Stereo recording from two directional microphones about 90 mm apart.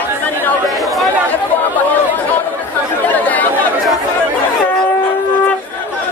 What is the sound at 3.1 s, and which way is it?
Chatter, 20° left (ahead or behind).